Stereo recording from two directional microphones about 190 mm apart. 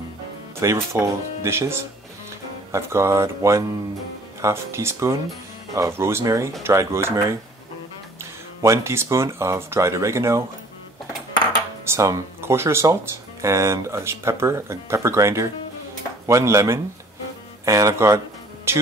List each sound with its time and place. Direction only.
0.6 s speech: 15° right (ahead or behind)
11.9 s speech: 15° right (ahead or behind)